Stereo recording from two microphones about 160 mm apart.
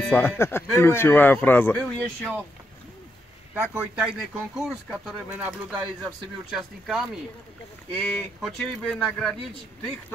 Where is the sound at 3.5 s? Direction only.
15° right (ahead or behind).